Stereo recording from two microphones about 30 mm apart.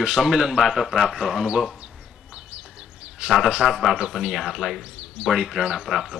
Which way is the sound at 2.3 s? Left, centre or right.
Right.